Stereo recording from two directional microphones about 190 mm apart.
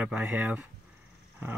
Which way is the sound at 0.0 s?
5° right (ahead or behind).